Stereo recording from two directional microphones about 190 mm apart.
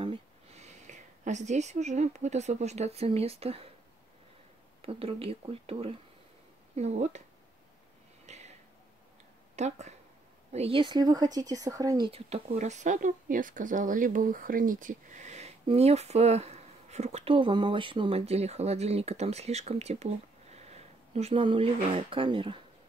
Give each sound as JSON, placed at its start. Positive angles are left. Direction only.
{"t": 0.0, "sound": "speech", "side_deg": -30}
{"t": 4.8, "sound": "speech", "side_deg": -30}
{"t": 8.3, "sound": "a sound", "side_deg": -35}
{"t": 9.6, "sound": "a woman's voice", "side_deg": -35}
{"t": 12.4, "sound": "speech", "side_deg": -40}